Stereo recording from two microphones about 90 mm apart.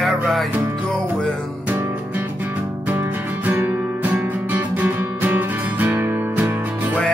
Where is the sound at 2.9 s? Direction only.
20° right (ahead or behind).